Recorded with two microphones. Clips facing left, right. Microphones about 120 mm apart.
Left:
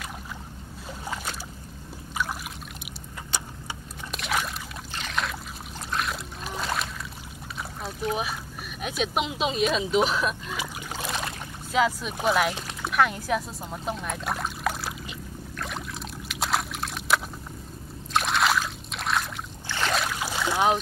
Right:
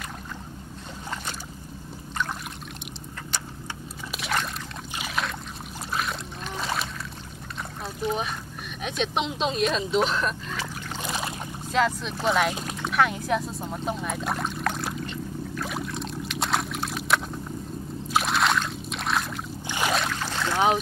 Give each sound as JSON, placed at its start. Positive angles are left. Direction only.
{"t": 4.1, "sound": "a sound", "side_deg": 0}
{"t": 4.9, "sound": "boat", "side_deg": -5}
{"t": 7.8, "sound": "rowboat", "side_deg": 0}
{"t": 8.8, "sound": "speech", "side_deg": 5}
{"t": 12.8, "sound": "pour", "side_deg": 0}
{"t": 18.1, "sound": "a sound", "side_deg": 0}
{"t": 19.9, "sound": "boat", "side_deg": 5}